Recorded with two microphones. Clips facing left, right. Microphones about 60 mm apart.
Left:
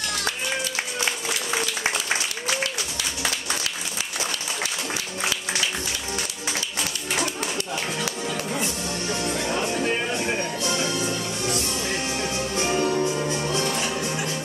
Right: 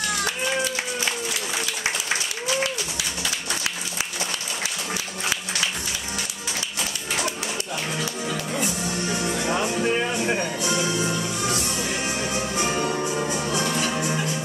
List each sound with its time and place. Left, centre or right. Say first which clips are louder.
8.3 s music: right 2 dB; centre
8.6 s music: right 2 dB; centre